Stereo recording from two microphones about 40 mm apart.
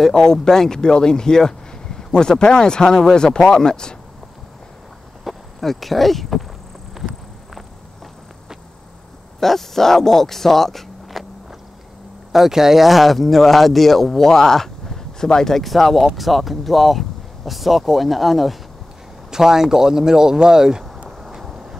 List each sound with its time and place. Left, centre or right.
0.0 s speech: centre
5.2 s speech: centre
9.4 s speech: centre
12.3 s speech: centre
19.3 s speech: centre
21.2 s vehicle: centre